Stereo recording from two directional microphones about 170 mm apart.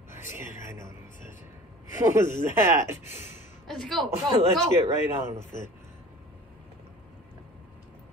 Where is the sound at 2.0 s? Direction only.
15° right (ahead or behind).